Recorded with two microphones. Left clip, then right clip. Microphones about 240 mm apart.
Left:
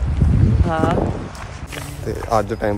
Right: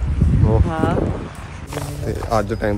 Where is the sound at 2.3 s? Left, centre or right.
Centre.